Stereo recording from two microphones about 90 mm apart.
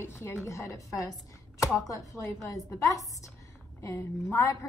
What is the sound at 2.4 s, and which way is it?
A woman's voice, 35° left (ahead or behind).